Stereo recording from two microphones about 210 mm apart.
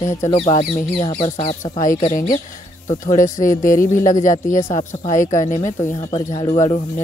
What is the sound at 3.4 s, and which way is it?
Speech, 40° left (ahead or behind).